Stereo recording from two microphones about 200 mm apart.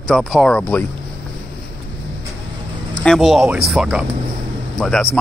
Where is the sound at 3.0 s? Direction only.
Centre (ahead or behind).